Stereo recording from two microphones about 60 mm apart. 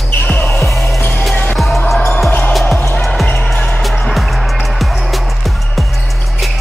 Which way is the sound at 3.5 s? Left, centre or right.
Centre.